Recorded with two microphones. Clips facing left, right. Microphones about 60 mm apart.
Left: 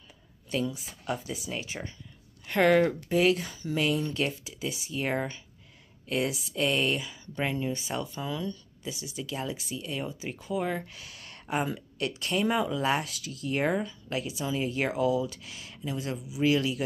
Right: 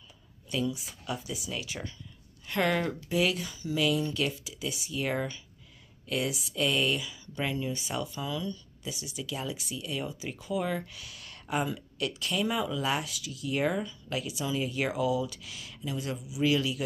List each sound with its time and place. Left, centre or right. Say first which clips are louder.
0.5 s speech: left 1 dB; left